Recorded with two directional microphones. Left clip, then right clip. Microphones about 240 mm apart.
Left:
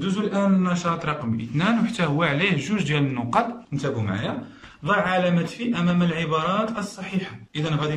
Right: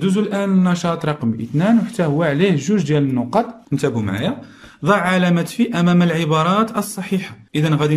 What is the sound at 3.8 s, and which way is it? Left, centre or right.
Speech, right.